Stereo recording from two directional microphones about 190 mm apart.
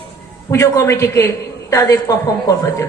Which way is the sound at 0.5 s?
15° left (ahead or behind).